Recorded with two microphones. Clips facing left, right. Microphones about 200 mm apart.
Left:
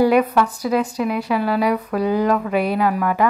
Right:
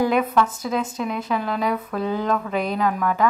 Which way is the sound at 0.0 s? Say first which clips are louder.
Left 4 dB; 10° left (ahead or behind).